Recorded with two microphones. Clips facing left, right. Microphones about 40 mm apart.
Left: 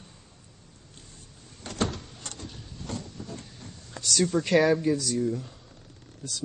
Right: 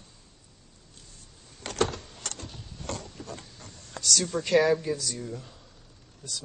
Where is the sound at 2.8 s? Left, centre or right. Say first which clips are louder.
Even; right.